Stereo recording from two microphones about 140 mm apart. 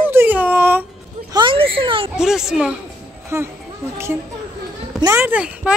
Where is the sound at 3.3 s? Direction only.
20° right (ahead or behind).